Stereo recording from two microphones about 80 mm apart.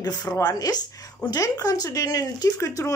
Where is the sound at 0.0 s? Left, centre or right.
Left.